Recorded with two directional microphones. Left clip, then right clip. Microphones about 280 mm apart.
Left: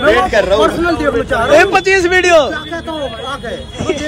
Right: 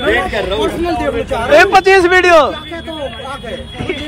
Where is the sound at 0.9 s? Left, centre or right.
Centre.